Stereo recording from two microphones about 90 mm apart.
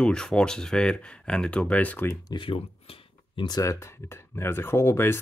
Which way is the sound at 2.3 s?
85° left.